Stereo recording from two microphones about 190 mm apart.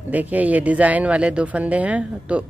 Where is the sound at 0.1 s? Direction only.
10° right (ahead or behind).